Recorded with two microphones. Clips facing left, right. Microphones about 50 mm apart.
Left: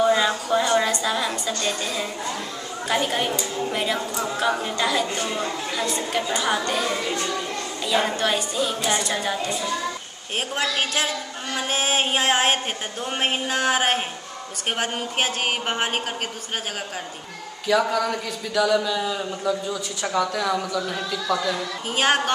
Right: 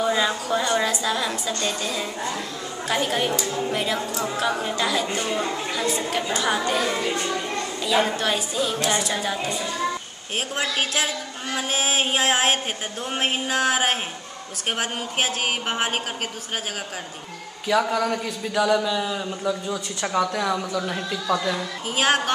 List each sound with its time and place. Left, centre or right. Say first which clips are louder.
0.0 s a sound: left 3 dB; centre
0.5 s a woman's voice: left 2 dB; centre
5.0 s a man's voice: right 1 dB; centre
7.8 s a woman's voice: even; centre
17.6 s a woman's voice: even; centre
21.9 s a woman's voice: even; centre